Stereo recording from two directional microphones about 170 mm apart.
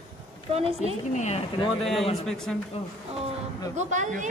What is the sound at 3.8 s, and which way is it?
Speech, 45° right (ahead or behind).